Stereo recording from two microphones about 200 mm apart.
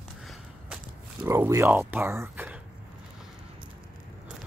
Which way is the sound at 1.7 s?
10° right (ahead or behind).